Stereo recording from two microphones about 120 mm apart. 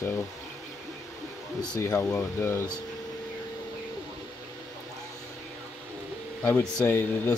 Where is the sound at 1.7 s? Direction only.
25° left (ahead or behind).